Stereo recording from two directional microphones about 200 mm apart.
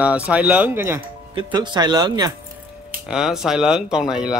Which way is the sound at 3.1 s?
Centre (ahead or behind).